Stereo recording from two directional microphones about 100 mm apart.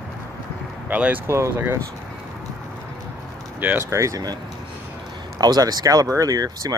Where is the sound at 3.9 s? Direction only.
30° right (ahead or behind).